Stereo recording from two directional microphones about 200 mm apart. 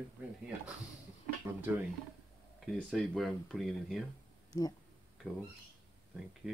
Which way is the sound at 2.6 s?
Centre (ahead or behind).